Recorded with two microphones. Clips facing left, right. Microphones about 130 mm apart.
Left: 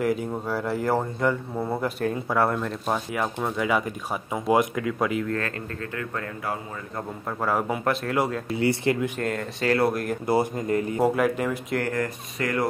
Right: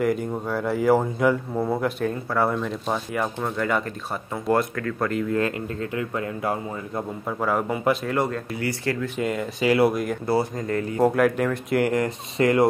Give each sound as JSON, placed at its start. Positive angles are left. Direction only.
{"t": 0.0, "sound": "speech", "side_deg": 0}
{"t": 5.3, "sound": "speech", "side_deg": -20}
{"t": 7.2, "sound": "speech", "side_deg": 0}
{"t": 8.5, "sound": "speech", "side_deg": 25}
{"t": 9.2, "sound": "speech", "side_deg": -5}
{"t": 10.2, "sound": "speech", "side_deg": 15}
{"t": 11.0, "sound": "speech", "side_deg": 0}
{"t": 11.8, "sound": "speech", "side_deg": -20}